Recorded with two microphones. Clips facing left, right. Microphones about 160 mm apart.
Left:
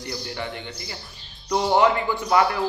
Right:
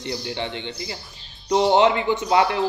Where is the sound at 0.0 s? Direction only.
25° right (ahead or behind).